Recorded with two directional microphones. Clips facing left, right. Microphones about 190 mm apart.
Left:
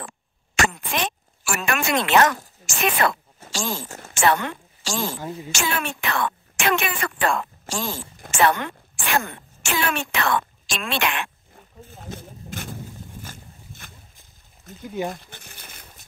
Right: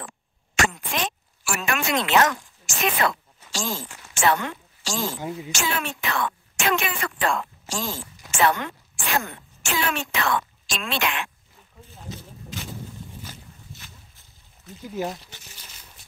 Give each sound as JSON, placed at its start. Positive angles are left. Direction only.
{"t": 0.6, "sound": "a sound", "side_deg": 55}
{"t": 3.5, "sound": "speech", "side_deg": 70}
{"t": 3.9, "sound": "a woman's voice", "side_deg": 45}
{"t": 13.2, "sound": "a sound", "side_deg": 50}
{"t": 14.8, "sound": "speech", "side_deg": 0}
{"t": 15.1, "sound": "crumpling", "side_deg": 55}